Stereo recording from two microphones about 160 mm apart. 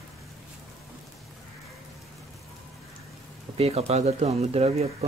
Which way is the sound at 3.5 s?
40° right (ahead or behind).